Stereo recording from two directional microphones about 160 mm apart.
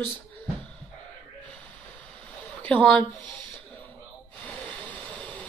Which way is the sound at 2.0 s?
10° left (ahead or behind).